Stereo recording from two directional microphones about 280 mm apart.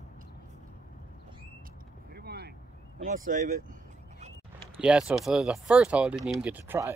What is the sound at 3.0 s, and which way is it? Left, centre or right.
Speech, right.